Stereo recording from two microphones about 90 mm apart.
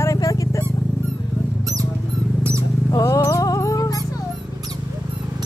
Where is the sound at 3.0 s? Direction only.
35° left (ahead or behind).